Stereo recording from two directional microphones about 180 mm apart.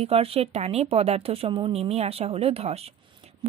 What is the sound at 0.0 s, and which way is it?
A woman's voice, 35° right (ahead or behind).